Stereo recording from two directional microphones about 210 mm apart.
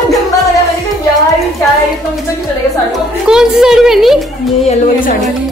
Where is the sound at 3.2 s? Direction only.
5° right (ahead or behind).